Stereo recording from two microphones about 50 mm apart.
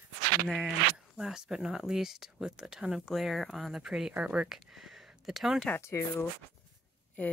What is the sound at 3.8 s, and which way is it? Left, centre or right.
Speech, centre.